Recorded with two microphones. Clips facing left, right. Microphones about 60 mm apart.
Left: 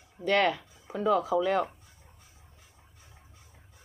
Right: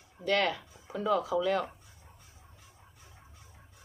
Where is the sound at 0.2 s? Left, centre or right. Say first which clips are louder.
Left 3 dB; centre.